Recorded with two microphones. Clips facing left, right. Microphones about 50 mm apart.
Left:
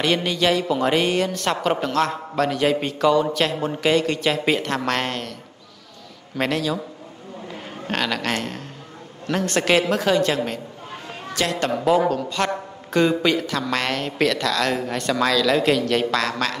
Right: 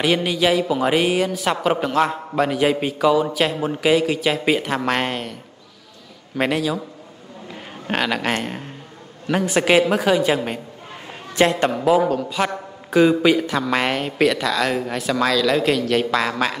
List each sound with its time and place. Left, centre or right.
0.0 s speech: centre
11.1 s a sound: right
11.7 s a man's voice: centre